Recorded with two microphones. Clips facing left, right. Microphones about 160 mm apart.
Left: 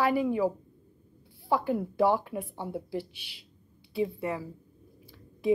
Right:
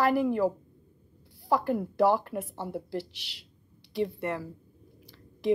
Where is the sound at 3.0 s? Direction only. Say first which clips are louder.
Even; 90° right.